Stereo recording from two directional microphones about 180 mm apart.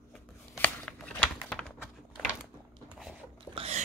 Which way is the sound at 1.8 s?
5° right (ahead or behind).